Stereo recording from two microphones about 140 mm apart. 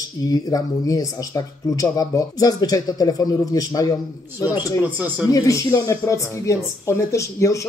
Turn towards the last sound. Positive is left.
turn(degrees=20)  # may be behind; listen again after turning